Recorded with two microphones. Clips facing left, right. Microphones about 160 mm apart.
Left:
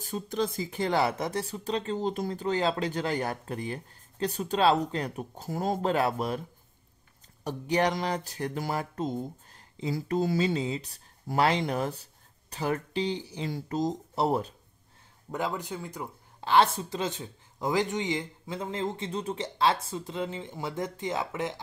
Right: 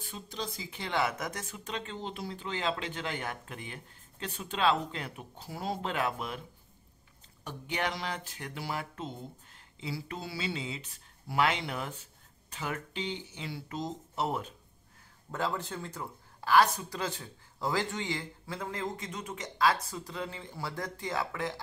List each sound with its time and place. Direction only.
0.0 s speech: 45° left (ahead or behind)
7.4 s speech: 40° left (ahead or behind)
15.3 s a woman's voice: 15° left (ahead or behind)